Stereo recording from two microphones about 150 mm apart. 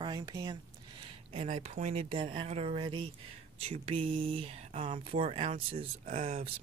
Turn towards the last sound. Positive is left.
turn(degrees=-55)  # may be behind; listen again after turning